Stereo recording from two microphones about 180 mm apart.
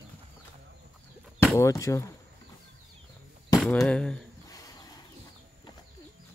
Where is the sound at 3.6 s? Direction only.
5° left (ahead or behind).